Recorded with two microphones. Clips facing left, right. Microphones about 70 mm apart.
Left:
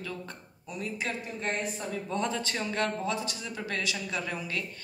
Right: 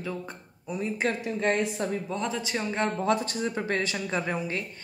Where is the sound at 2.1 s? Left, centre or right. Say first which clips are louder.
Even; centre.